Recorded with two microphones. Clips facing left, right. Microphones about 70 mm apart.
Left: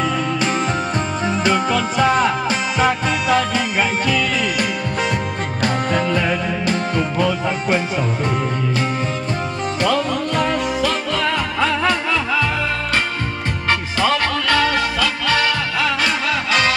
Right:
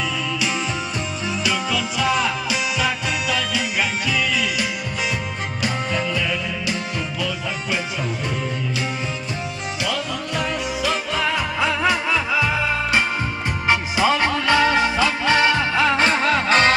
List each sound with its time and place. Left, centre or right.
0.0 s music: left
9.8 s music: left
10.9 s music: centre
13.7 s music: centre; by 16.7 s right